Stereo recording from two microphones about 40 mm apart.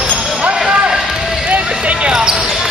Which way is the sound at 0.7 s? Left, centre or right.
Right.